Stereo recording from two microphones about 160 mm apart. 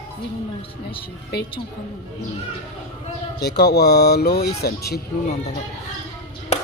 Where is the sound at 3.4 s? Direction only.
90° left.